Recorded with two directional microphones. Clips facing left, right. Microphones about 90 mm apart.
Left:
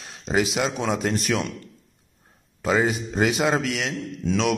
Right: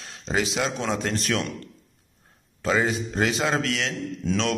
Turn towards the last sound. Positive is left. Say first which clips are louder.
# left 2 dB
turn(degrees=5)  # may be behind; listen again after turning